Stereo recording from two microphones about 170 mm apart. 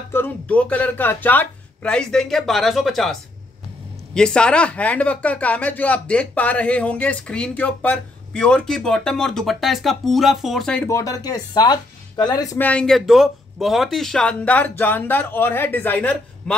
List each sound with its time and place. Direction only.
0.1 s speech: 10° left (ahead or behind)
10.9 s speech: 20° left (ahead or behind)
12.5 s speech: 10° left (ahead or behind)